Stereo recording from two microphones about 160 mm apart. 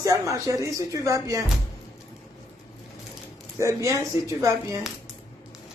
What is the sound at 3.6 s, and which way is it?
Speech, 20° right (ahead or behind).